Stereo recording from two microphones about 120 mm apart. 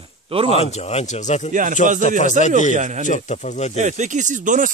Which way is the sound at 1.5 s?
90° right.